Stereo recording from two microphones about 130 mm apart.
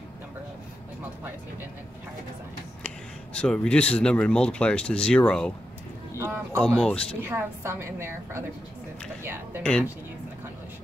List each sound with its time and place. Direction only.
3.3 s speech: 10° left (ahead or behind)
6.1 s a sound: 20° right (ahead or behind)
6.6 s speech: 5° left (ahead or behind)
7.2 s a woman's voice: 15° right (ahead or behind)
9.6 s speech: 10° left (ahead or behind)